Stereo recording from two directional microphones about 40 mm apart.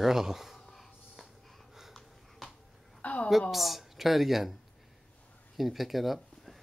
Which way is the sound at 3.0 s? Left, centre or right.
Left.